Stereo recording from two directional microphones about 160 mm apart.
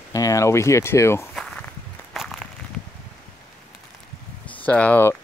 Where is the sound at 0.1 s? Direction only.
20° left (ahead or behind).